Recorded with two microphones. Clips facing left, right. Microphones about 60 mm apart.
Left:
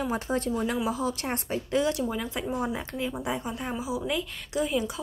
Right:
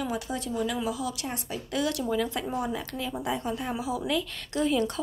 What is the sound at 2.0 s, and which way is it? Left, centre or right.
Speech, centre.